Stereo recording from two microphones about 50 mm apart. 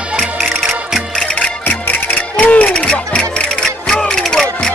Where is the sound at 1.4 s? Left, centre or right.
Left.